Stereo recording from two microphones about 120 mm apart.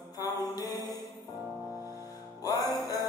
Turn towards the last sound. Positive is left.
turn(degrees=30)  # may be behind; listen again after turning